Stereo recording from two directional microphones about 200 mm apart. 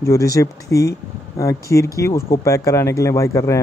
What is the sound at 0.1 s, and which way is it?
Speech, 15° left (ahead or behind).